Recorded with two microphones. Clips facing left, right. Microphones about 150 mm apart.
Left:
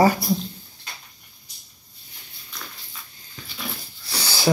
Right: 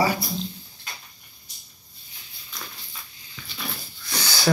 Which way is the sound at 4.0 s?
30° left (ahead or behind).